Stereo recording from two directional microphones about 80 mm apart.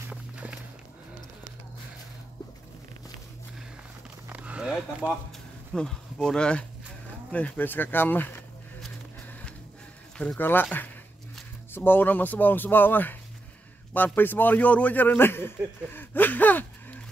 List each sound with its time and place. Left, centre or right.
0.1 s music: centre
4.3 s a sound: centre
5.8 s speech: centre
10.3 s speech: left